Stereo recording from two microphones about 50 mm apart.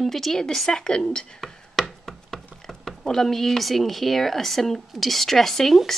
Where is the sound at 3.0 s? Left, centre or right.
Centre.